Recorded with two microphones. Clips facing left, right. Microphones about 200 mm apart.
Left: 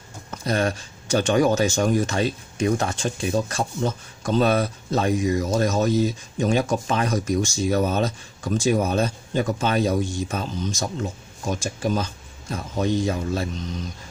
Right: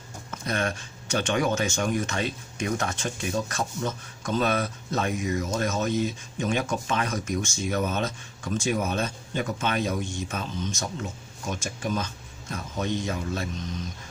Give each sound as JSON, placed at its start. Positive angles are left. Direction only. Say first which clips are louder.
{"t": 0.3, "sound": "speech", "louder": "left 5 dB", "side_deg": 35}